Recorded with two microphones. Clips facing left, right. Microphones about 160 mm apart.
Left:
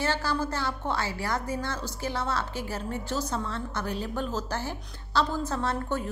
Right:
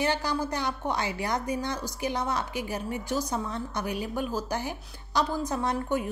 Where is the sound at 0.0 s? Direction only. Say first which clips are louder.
Right 1 dB; 15° right (ahead or behind).